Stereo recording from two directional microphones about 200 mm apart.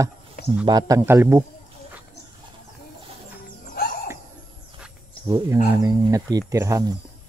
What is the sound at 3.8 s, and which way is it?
Music, 45° left (ahead or behind).